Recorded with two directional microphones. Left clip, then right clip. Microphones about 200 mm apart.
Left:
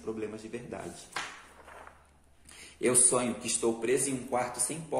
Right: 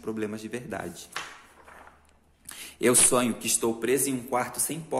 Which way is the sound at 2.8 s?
50° right (ahead or behind).